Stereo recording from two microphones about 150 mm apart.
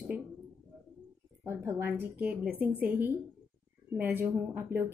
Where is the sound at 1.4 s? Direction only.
20° right (ahead or behind).